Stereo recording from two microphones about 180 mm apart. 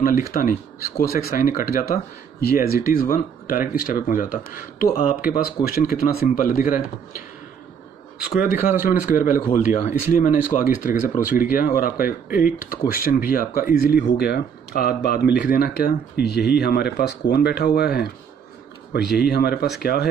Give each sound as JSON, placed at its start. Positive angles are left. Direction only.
{"t": 0.0, "sound": "speech", "side_deg": 50}
{"t": 8.3, "sound": "speech", "side_deg": 55}